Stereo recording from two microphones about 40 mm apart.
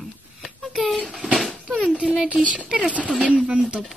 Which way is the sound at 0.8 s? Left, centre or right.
Centre.